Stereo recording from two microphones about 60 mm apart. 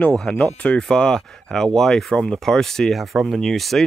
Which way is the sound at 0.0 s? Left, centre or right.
Centre.